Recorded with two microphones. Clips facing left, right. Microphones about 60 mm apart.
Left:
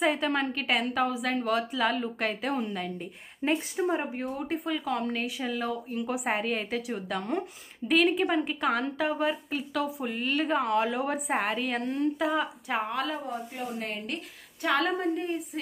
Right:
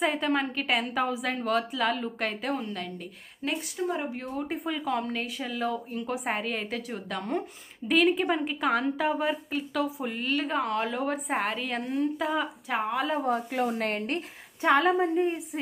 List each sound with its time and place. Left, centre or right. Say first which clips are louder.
0.0 s a woman's voice: even; centre
3.4 s speech: left 3 dB; left
4.1 s a woman's voice: left 1 dB; centre
13.2 s speech: right 8 dB; right
14.7 s a woman's voice: right 4 dB; centre